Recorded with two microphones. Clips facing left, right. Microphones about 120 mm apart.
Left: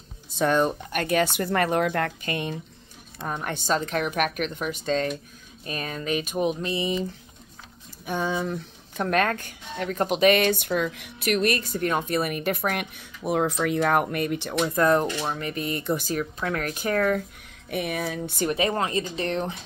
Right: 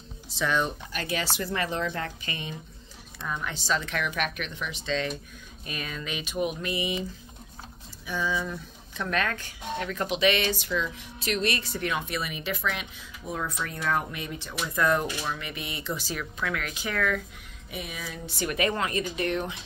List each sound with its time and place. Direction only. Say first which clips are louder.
0.4 s speech: left 6 dB; 45° left (ahead or behind)
8.0 s speech: left 3 dB; 55° left (ahead or behind)
14.6 s speech: left 4 dB; 40° left (ahead or behind)
17.6 s speech: left 10 dB; 60° left (ahead or behind)
18.5 s speech: left 2 dB; 30° left (ahead or behind)